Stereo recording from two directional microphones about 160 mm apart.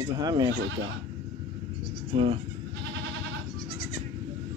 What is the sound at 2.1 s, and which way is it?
Speech, 35° right (ahead or behind).